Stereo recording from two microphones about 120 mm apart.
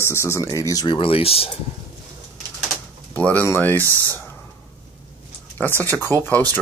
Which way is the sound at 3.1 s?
10° left (ahead or behind).